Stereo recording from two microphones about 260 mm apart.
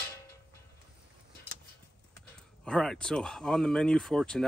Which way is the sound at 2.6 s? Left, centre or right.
Centre.